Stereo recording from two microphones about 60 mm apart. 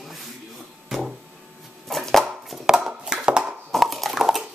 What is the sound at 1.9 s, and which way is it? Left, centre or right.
Chopping, centre.